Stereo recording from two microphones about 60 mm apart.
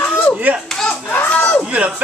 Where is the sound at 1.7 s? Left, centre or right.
Right.